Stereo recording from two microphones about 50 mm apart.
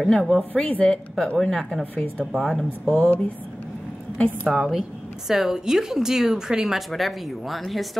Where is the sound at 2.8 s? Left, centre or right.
Centre.